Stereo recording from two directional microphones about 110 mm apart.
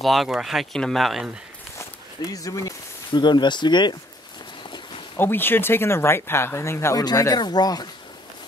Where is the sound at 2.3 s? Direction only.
30° left (ahead or behind).